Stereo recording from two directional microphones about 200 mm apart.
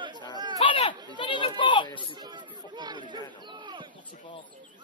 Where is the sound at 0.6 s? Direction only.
25° left (ahead or behind).